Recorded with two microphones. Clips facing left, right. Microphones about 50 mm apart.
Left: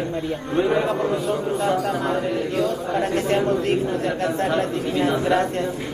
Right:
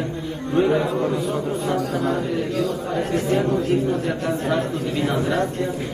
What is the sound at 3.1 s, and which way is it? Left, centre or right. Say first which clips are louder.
Speech: right 1 dB; left.